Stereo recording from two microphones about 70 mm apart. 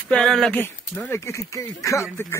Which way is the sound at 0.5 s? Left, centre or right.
Left.